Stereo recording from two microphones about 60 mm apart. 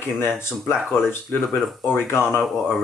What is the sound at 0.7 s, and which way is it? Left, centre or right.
Speech, centre.